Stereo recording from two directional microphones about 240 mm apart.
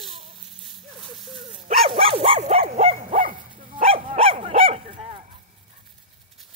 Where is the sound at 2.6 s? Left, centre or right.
Right.